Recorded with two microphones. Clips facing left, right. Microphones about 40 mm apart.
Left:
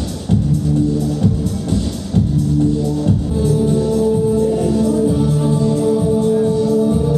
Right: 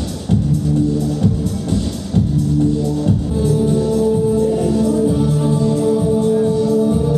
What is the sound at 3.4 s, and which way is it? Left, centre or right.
Music, centre.